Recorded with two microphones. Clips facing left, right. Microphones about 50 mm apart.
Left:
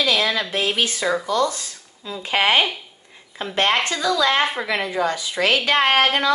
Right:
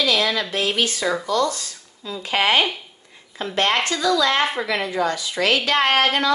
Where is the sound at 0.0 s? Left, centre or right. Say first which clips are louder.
Even; centre.